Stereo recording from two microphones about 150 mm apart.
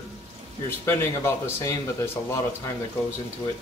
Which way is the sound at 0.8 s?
15° left (ahead or behind).